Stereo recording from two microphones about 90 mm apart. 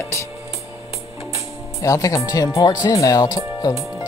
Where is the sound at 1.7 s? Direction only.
35° left (ahead or behind).